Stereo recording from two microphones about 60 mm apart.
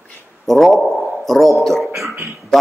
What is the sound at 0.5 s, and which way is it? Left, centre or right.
A man's voice, centre.